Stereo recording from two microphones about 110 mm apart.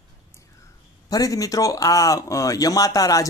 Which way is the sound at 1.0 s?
35° left (ahead or behind).